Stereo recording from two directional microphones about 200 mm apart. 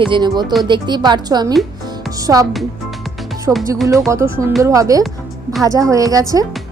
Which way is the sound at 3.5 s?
10° right (ahead or behind).